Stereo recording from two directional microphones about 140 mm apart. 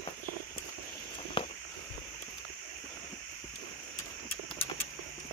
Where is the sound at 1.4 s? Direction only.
40° left (ahead or behind).